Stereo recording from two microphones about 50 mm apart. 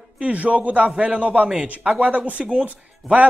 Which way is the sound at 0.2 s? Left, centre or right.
Right.